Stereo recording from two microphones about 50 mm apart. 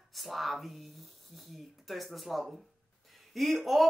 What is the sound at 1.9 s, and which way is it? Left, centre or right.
Speech, centre.